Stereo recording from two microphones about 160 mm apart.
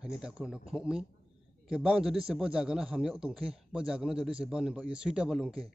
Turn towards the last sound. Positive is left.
turn(degrees=-5)  # may be behind; listen again after turning